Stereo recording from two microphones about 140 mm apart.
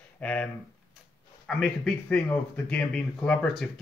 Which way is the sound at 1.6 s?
5° left (ahead or behind).